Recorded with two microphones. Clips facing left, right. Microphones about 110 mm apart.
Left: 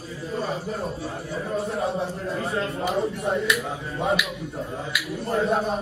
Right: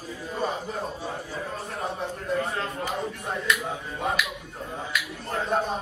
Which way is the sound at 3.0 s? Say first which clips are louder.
Left 7 dB; 25° left (ahead or behind).